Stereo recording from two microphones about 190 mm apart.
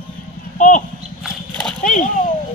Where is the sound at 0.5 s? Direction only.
40° left (ahead or behind).